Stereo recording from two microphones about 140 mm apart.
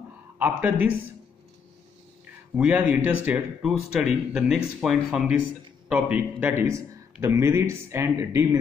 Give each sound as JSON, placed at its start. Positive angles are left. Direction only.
{"t": 0.4, "sound": "speech", "side_deg": -10}
{"t": 2.5, "sound": "a man's voice", "side_deg": -10}